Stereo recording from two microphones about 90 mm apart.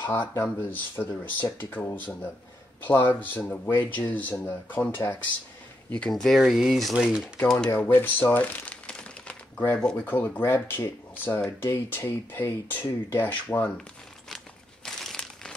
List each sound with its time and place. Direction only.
0.0 s speech: 20° left (ahead or behind); by 7.2 s 10° right (ahead or behind)
7.5 s crumpling: 20° left (ahead or behind)
10.0 s speech: 20° left (ahead or behind)
15.0 s crumpling: 5° left (ahead or behind)